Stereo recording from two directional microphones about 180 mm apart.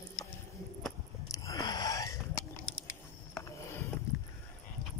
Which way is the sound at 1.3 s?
20° left (ahead or behind).